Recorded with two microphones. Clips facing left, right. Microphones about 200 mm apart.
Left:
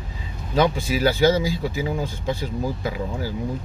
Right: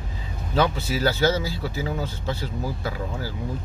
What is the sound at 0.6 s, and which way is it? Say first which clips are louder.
Speech: left 3 dB; 15° left (ahead or behind).